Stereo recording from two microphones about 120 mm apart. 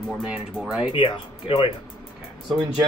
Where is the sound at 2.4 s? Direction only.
5° right (ahead or behind).